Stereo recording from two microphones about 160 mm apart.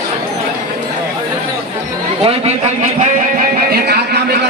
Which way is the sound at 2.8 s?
50° right (ahead or behind).